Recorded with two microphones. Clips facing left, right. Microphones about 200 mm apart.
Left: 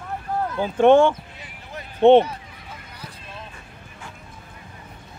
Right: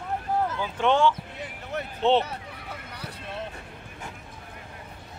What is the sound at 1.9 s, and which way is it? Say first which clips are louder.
Speech: left 10 dB; 55° left (ahead or behind).